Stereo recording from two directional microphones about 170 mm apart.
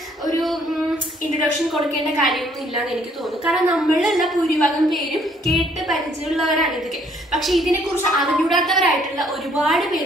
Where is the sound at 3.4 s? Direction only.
5° right (ahead or behind).